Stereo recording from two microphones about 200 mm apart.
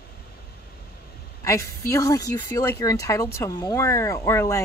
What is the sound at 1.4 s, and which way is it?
A woman's voice, 15° left (ahead or behind).